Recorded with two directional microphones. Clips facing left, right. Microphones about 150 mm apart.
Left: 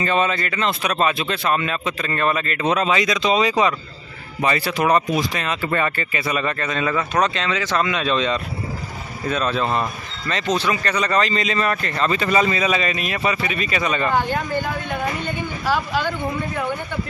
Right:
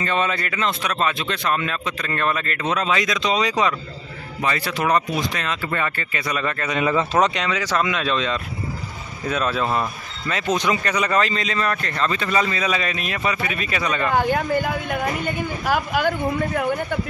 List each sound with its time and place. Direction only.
0.0 s speech: 5° left (ahead or behind)
0.7 s speech: 10° left (ahead or behind)
6.6 s speech: 15° right (ahead or behind)
7.4 s speech: 10° right (ahead or behind)
14.1 s speech: 10° right (ahead or behind)